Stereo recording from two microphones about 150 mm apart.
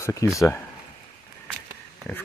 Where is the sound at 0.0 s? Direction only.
20° left (ahead or behind).